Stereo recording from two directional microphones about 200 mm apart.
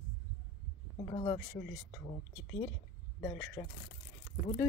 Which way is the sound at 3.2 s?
15° left (ahead or behind).